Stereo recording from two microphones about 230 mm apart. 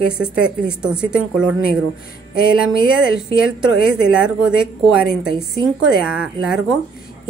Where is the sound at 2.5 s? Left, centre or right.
Left.